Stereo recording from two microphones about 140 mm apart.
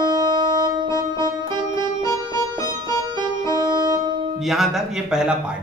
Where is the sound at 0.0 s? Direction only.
30° right (ahead or behind).